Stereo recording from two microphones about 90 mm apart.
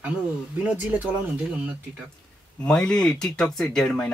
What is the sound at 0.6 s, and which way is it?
Speech, 15° right (ahead or behind).